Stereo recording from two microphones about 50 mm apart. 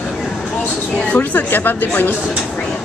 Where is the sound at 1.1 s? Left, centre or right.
Left.